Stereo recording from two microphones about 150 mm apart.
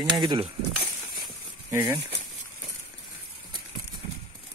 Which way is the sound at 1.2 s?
15° right (ahead or behind).